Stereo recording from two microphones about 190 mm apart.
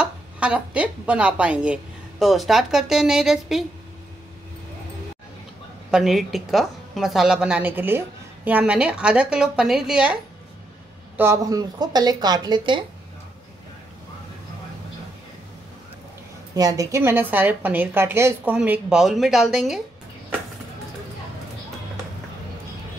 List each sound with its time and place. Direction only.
0.0 s speech: 5° right (ahead or behind)
5.9 s a woman's voice: centre (ahead or behind)
11.1 s speech: 15° right (ahead or behind)
16.5 s a woman's voice: 20° right (ahead or behind); by 19.8 s centre (ahead or behind)